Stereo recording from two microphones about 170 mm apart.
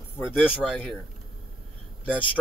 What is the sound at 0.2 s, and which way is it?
Speech, 10° left (ahead or behind).